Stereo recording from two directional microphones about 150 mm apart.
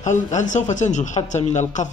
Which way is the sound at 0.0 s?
55° left (ahead or behind).